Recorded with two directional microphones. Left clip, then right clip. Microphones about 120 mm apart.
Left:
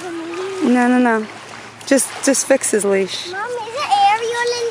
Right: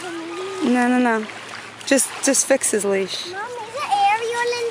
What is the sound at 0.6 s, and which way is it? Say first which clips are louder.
Speech: left 3 dB; 5° right (ahead or behind).